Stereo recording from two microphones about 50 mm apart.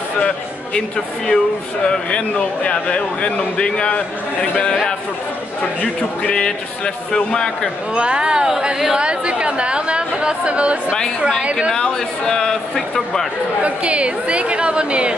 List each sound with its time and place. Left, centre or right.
0.7 s speech: centre
1.9 s speech: left
5.8 s speech: centre
7.9 s speech: centre
8.9 s a woman's voice: right
11.7 s speech: centre
13.6 s a woman's voice: right